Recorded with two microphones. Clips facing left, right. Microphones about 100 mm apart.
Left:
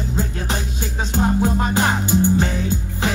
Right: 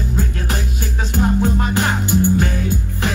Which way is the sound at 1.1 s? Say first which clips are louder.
Right 1 dB; 20° left (ahead or behind).